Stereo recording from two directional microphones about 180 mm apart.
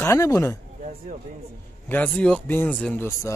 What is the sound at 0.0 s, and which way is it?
Speech, 15° left (ahead or behind).